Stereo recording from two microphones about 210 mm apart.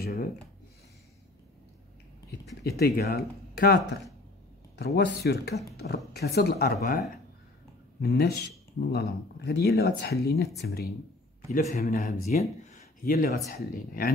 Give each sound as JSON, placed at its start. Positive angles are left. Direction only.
{"t": 0.0, "sound": "speech", "side_deg": 45}
{"t": 2.6, "sound": "speech", "side_deg": 50}
{"t": 12.6, "sound": "a sound", "side_deg": 40}
{"t": 13.5, "sound": "speech", "side_deg": 45}